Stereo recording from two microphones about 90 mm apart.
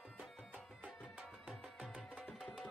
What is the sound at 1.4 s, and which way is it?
Music, 10° right (ahead or behind).